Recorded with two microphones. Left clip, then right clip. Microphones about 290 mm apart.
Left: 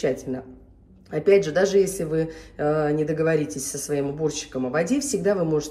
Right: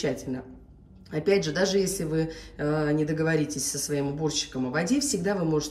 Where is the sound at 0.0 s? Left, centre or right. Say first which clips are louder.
Left 5 dB; centre.